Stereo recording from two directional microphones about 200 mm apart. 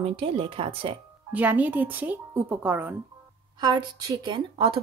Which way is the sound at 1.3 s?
10° right (ahead or behind).